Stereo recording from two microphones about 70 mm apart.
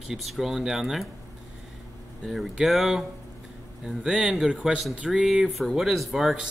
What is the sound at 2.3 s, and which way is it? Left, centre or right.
A man's voice, centre.